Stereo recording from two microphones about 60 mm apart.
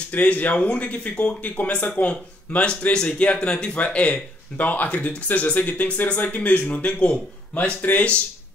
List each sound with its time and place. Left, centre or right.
0.1 s speech: left